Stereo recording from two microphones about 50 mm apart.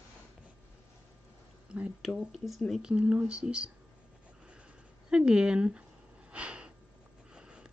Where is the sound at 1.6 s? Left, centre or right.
Right.